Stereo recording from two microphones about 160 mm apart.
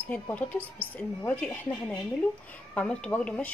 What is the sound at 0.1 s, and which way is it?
Speech, 10° left (ahead or behind).